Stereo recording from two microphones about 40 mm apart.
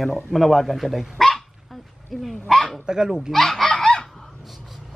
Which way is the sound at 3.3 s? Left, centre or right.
Centre.